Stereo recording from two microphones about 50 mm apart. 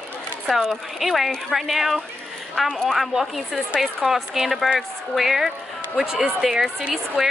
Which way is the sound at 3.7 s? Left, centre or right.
Centre.